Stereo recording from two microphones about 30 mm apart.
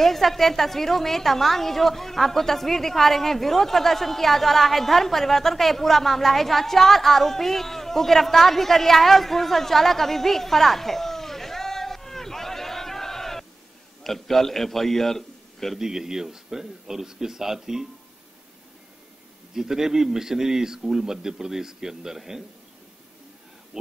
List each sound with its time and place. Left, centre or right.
0.0 s a woman's voice: centre
15.8 s a man's voice: centre
19.5 s a man's voice: centre
23.7 s a sound: centre